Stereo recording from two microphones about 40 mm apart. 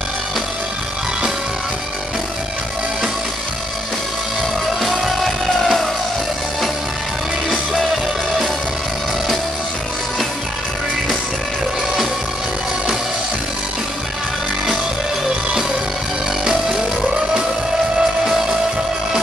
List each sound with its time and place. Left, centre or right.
4.8 s music: centre
16.4 s a sound: centre
18.2 s music: centre